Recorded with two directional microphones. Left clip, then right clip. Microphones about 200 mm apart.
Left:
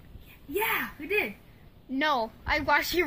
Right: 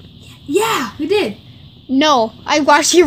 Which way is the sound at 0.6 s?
Centre (ahead or behind).